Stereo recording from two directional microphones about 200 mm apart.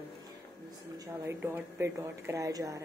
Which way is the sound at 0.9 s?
10° right (ahead or behind).